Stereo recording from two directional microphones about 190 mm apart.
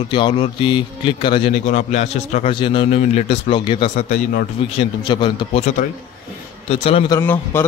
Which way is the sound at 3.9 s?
45° left (ahead or behind).